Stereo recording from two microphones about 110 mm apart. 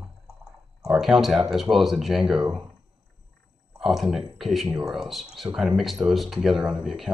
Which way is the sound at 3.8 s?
5° right (ahead or behind).